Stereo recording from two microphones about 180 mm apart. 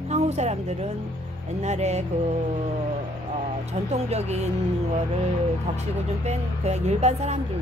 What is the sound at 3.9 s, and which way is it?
Speech, 35° right (ahead or behind).